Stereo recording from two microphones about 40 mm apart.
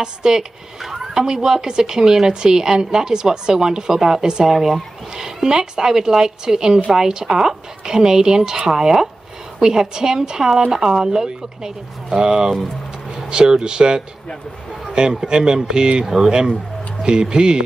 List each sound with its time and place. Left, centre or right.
0.0 s speech: centre